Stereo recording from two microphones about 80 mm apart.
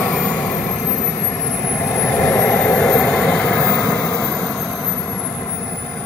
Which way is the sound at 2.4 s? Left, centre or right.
Centre.